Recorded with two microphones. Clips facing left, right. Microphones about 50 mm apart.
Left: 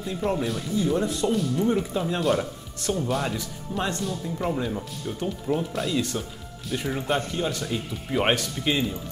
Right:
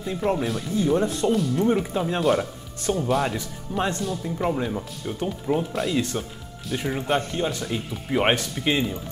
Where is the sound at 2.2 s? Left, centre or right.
Centre.